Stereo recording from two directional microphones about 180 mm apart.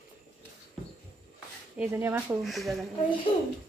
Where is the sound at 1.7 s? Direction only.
10° right (ahead or behind).